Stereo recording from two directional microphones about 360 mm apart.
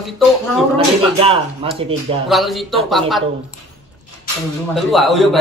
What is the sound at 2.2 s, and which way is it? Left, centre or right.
A man's voice, centre.